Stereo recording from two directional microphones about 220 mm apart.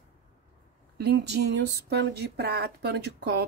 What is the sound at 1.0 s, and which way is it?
Speech, 50° right (ahead or behind).